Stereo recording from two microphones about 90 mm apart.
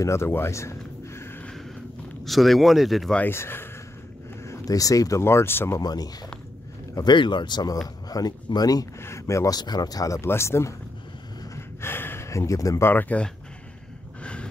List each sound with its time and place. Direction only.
0.0 s a sound: 30° left (ahead or behind)
2.2 s speech: centre (ahead or behind)
3.2 s speech: 25° left (ahead or behind)
4.6 s speech: 40° left (ahead or behind)
5.2 s speech: 30° left (ahead or behind)
5.8 s speech: 45° left (ahead or behind)
7.0 s speech: 55° left (ahead or behind)
9.0 s speech: 35° left (ahead or behind)
11.5 s a sound: 25° left (ahead or behind)
12.8 s speech: 20° left (ahead or behind)